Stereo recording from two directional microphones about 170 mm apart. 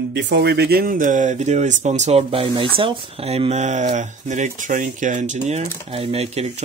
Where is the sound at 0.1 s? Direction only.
90° right.